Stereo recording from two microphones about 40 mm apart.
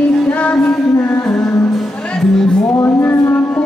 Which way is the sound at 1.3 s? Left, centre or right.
Centre.